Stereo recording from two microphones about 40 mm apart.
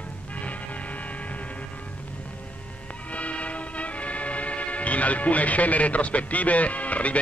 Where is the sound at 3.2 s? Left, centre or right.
Left.